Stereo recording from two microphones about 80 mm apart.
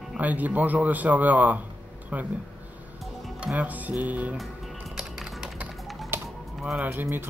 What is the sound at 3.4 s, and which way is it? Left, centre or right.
Speech, centre.